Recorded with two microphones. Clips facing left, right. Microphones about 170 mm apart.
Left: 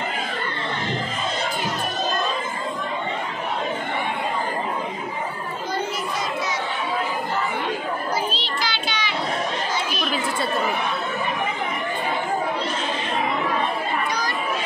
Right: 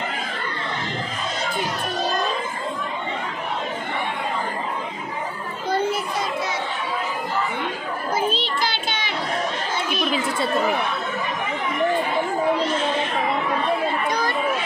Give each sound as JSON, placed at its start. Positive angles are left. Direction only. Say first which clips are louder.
{"t": 5.7, "sound": "children playing", "louder": "right 6 dB", "side_deg": -55}
{"t": 8.3, "sound": "child singing", "louder": "right 3 dB", "side_deg": -50}